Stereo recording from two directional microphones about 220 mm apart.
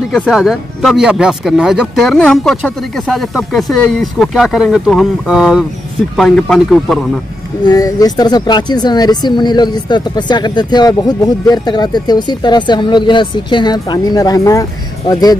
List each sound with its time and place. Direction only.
0.1 s speech: centre (ahead or behind)
7.6 s speech: 15° left (ahead or behind)